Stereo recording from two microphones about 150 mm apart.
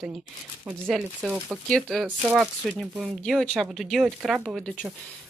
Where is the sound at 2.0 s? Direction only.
5° right (ahead or behind).